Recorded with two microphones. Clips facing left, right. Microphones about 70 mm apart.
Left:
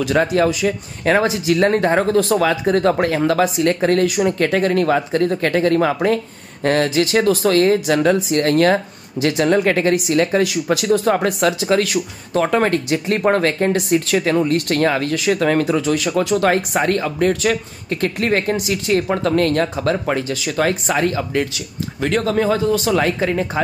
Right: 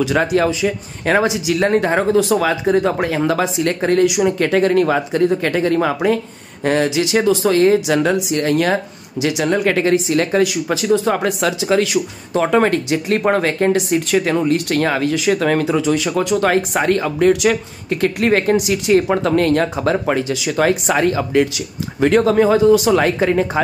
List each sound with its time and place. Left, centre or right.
0.0 s speech: centre
1.6 s speech: centre
2.8 s speech: centre
3.3 s speech: right
4.6 s speech: centre
5.8 s speech: centre
9.9 s speech: right
10.3 s speech: centre
11.2 s speech: centre